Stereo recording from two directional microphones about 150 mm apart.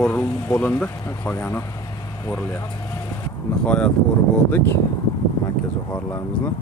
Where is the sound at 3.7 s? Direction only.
5° left (ahead or behind).